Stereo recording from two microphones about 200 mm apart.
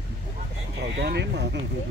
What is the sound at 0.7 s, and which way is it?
Speech, 55° right (ahead or behind).